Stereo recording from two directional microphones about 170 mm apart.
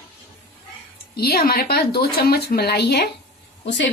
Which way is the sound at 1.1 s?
65° left (ahead or behind).